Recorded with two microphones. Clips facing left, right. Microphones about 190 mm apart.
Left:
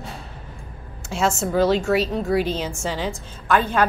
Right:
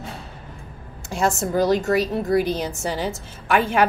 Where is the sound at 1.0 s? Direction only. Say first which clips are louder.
Even; centre (ahead or behind).